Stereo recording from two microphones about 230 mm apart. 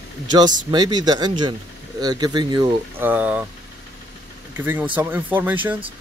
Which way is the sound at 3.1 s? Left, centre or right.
Centre.